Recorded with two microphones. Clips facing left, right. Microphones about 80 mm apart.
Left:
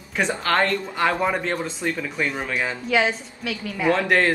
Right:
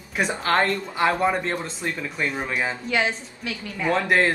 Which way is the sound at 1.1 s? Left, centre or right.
Centre.